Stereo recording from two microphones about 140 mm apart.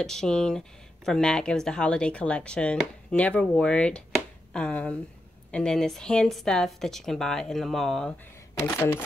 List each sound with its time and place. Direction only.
0.0 s speech: 5° left (ahead or behind)
8.7 s speech: 20° left (ahead or behind)